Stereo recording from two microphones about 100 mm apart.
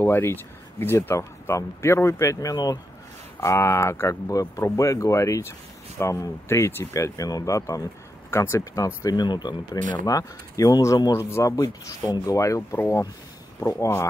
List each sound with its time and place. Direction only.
0.0 s speech: 25° left (ahead or behind)
2.5 s speech: 40° left (ahead or behind)
3.3 s speech: 30° left (ahead or behind)
9.1 s speech: 45° left (ahead or behind); by 14.0 s 30° left (ahead or behind)